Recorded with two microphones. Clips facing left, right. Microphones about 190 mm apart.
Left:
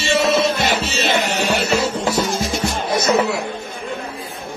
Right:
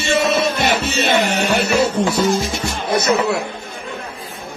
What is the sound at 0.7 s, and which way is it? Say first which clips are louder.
Music: right 2 dB; 55° right (ahead or behind).